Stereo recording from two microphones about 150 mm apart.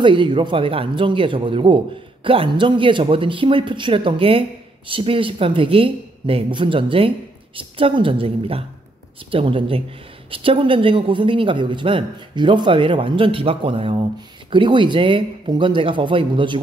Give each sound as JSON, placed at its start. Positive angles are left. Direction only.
{"t": 0.0, "sound": "speech", "side_deg": -35}